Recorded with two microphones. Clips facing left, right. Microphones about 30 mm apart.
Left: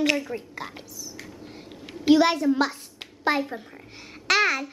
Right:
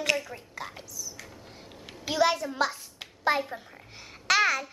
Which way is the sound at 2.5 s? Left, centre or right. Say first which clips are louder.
Left 6 dB; centre.